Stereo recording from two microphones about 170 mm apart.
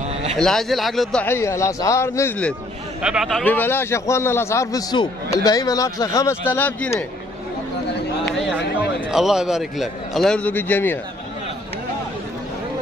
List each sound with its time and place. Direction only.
0.4 s a man's voice: centre (ahead or behind)
1.2 s a man's voice: 15° left (ahead or behind)
3.0 s a man's voice: 5° right (ahead or behind)
9.1 s a man's voice: 5° right (ahead or behind)